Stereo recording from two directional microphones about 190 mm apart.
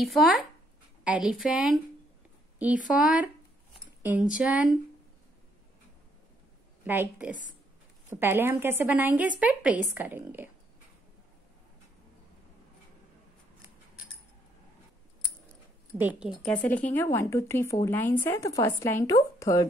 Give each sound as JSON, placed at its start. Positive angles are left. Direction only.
{"t": 0.0, "sound": "a woman's voice", "side_deg": 0}
{"t": 2.9, "sound": "a woman's voice", "side_deg": -5}
{"t": 6.9, "sound": "a woman's voice", "side_deg": -10}
{"t": 16.0, "sound": "a woman's voice", "side_deg": -5}
{"t": 16.5, "sound": "speech", "side_deg": 10}